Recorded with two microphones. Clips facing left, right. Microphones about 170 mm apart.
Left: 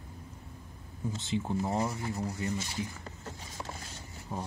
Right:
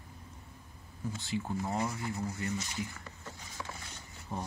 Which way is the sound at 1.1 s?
20° left (ahead or behind).